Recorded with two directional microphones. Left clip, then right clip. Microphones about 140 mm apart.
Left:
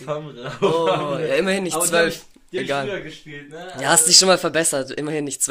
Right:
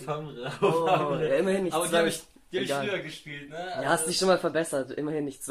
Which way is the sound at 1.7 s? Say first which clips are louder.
Left 6 dB; 30° left (ahead or behind).